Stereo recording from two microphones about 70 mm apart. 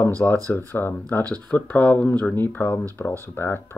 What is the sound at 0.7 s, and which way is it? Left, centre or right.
Speech, left.